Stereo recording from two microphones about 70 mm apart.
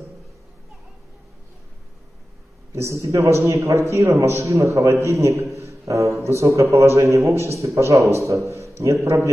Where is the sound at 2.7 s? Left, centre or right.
Right.